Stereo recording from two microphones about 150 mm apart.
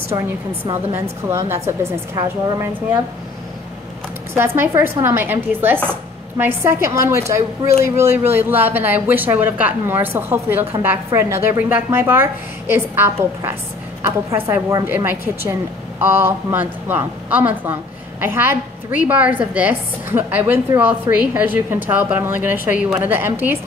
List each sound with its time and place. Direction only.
1.3 s a woman's voice: 15° right (ahead or behind)
4.4 s a woman's voice: 15° right (ahead or behind)